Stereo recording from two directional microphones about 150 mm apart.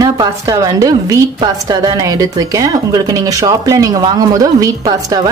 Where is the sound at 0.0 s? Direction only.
25° right (ahead or behind).